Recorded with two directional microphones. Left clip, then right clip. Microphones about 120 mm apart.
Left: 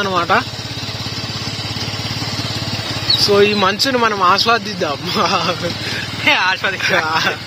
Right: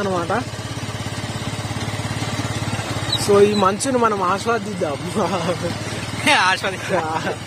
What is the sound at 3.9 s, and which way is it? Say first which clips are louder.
Speech: left 5 dB; 5° left (ahead or behind).